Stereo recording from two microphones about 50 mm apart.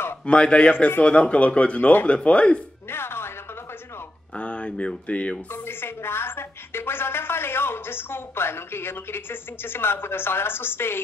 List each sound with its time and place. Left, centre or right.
0.3 s speech: left
1.0 s speech: left
2.9 s speech: left
4.4 s speech: left
5.5 s a woman's voice: left